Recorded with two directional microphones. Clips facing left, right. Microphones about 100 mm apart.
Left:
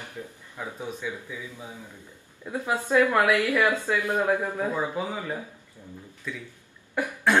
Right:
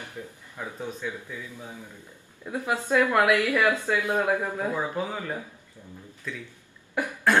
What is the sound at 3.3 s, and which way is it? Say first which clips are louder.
Speech: even; 15° left (ahead or behind).